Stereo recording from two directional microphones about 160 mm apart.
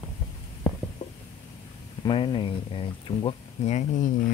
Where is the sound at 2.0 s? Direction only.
30° left (ahead or behind); by 4.1 s 50° left (ahead or behind).